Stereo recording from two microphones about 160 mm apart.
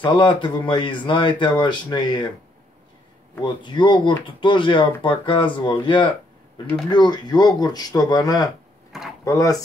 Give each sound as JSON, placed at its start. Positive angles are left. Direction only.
{"t": 0.0, "sound": "speech", "side_deg": 30}
{"t": 3.4, "sound": "speech", "side_deg": 30}